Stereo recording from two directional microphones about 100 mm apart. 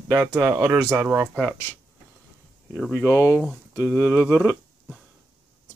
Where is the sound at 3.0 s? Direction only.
25° left (ahead or behind).